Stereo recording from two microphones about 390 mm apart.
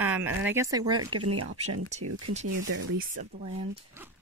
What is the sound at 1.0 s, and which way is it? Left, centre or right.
Speech, right.